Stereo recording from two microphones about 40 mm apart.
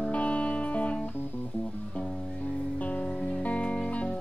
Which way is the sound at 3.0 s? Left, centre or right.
Left.